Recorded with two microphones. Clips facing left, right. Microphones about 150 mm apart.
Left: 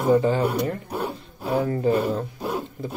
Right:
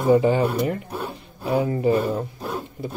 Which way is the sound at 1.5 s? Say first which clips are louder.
Right 1 dB; 10° right (ahead or behind).